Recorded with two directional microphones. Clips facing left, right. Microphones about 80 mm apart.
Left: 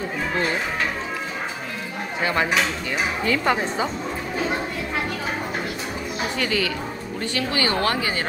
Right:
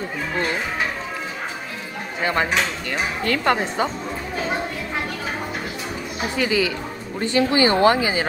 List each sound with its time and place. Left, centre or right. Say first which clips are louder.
2.2 s dishes: right 1 dB; centre
6.3 s speech: right 5 dB; centre
7.2 s speech: right 7 dB; right
7.9 s speech: right 4 dB; centre